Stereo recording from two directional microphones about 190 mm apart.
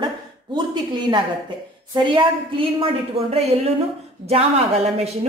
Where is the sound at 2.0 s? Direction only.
25° right (ahead or behind).